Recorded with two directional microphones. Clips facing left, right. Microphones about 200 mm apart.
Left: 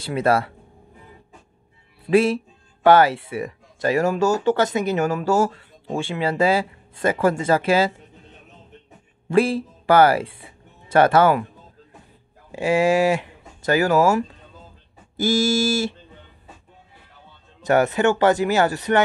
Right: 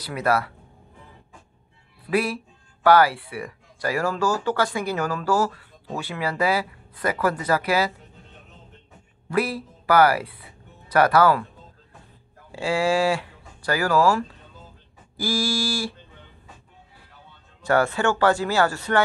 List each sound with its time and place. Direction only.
0.0 s speech: 25° left (ahead or behind)
2.0 s speech: 25° left (ahead or behind)
9.3 s speech: 25° left (ahead or behind)
12.4 s speech: 20° left (ahead or behind)
17.6 s speech: 20° left (ahead or behind)